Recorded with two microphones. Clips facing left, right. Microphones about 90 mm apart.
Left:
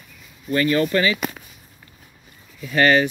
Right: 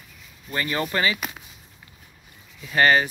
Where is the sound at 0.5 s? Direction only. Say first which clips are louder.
Left 8 dB; 25° right (ahead or behind).